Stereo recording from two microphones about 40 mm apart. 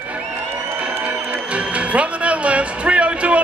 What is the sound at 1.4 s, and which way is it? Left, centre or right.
Music, right.